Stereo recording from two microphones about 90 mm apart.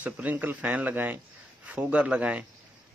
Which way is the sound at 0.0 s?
15° right (ahead or behind).